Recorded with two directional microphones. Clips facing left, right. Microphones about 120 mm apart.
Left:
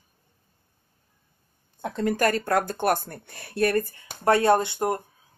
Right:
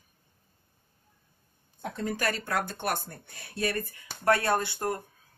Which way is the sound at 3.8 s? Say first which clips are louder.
Left 6 dB; 35° left (ahead or behind).